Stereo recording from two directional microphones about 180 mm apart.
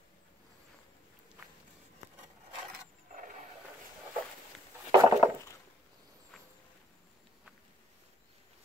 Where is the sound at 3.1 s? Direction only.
45° right (ahead or behind).